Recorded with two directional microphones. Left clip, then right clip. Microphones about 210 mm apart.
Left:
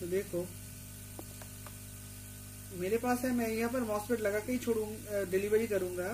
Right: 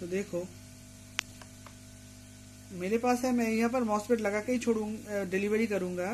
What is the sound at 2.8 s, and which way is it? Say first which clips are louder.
Speech: right 3 dB; 45° right (ahead or behind).